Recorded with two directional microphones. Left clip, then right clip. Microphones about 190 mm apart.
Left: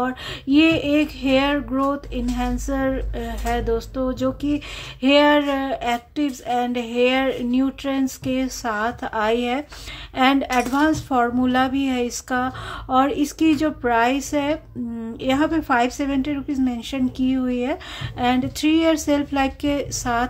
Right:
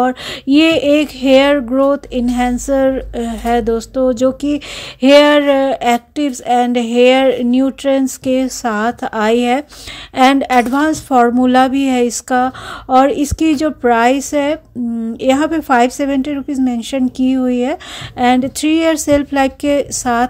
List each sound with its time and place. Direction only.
0.0 s speech: 35° right (ahead or behind)